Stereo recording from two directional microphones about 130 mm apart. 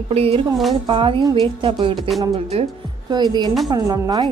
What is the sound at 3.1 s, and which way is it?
Speech, 35° right (ahead or behind).